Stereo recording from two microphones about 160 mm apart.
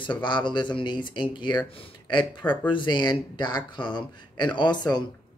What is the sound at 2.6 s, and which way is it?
Speech, 30° left (ahead or behind).